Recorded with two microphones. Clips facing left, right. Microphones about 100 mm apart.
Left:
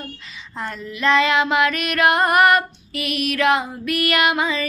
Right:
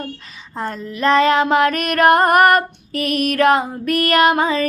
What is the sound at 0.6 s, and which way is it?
Female singing, 45° right (ahead or behind).